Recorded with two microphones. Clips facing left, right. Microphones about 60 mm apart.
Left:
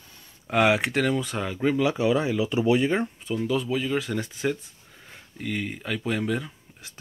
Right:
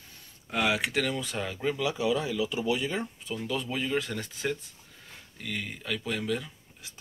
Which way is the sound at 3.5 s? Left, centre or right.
Centre.